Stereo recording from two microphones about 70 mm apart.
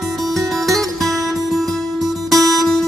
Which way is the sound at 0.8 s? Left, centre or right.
Centre.